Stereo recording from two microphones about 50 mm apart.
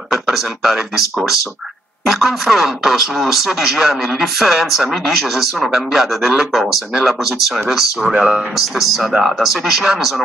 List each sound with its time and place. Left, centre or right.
0.1 s speech: centre
8.1 s speech: centre
8.5 s speech: centre